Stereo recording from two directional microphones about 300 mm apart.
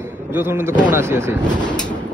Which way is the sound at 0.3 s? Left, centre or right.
Centre.